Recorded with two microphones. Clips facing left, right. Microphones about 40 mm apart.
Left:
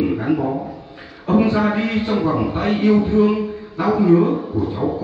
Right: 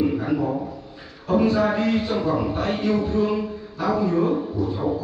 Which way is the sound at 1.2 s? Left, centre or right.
Left.